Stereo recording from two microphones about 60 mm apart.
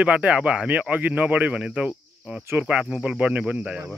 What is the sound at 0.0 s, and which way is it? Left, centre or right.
Speech, right.